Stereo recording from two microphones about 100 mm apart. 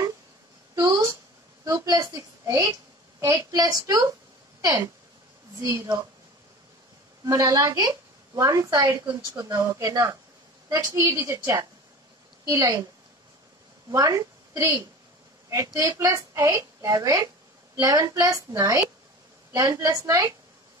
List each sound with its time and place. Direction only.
0.7 s a sound: 40° right (ahead or behind)
5.6 s a woman's voice: 25° right (ahead or behind)
7.2 s a woman's voice: 35° right (ahead or behind)
12.4 s a woman's voice: 40° right (ahead or behind)
13.8 s a woman's voice: 35° right (ahead or behind)